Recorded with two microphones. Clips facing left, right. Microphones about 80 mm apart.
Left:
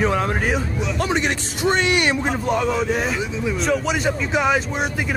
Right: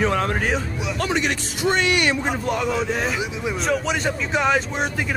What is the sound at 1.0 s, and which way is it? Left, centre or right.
A man's voice, left.